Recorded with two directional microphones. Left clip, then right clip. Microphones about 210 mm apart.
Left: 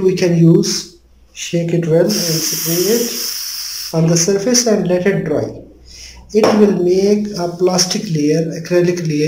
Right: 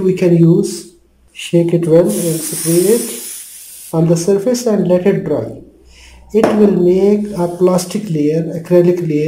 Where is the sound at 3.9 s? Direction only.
15° right (ahead or behind).